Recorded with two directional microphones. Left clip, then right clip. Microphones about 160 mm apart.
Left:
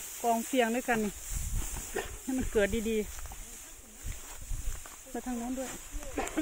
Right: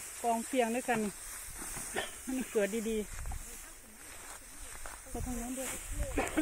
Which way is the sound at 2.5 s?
25° left (ahead or behind).